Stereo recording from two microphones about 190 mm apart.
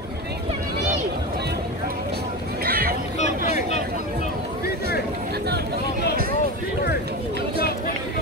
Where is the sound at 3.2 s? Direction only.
35° left (ahead or behind).